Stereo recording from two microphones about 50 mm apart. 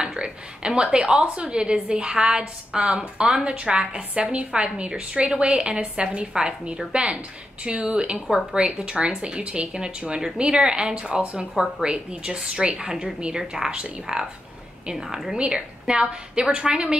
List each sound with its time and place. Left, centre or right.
0.0 s a woman's voice: centre
15.3 s a woman's voice: centre